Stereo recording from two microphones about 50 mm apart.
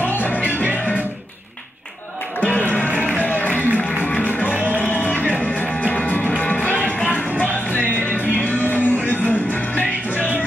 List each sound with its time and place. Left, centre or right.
0.0 s music: left
2.4 s music: left
4.6 s music: right
4.8 s music: left